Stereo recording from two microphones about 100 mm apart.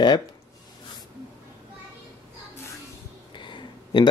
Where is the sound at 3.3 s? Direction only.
55° left (ahead or behind).